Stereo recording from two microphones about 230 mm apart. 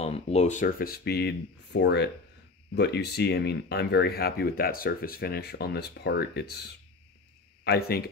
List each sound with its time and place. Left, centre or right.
0.0 s speech: left